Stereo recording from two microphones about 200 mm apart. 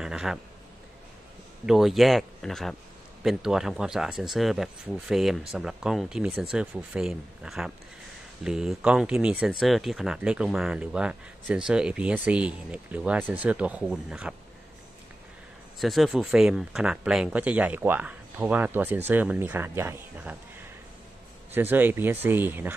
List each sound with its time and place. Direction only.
0.0 s a sound: 5° right (ahead or behind)
1.7 s speech: centre (ahead or behind)
15.8 s speech: centre (ahead or behind)
21.5 s speech: 10° right (ahead or behind)